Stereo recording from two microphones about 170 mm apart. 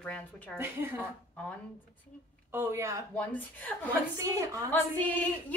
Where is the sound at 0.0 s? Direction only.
5° left (ahead or behind).